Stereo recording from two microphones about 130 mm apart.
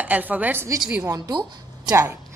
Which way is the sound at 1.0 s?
30° right (ahead or behind).